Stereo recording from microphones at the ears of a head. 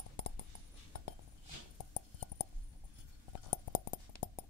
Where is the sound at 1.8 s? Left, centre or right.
Left.